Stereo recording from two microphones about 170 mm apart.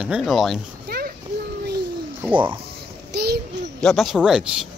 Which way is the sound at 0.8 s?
65° right (ahead or behind).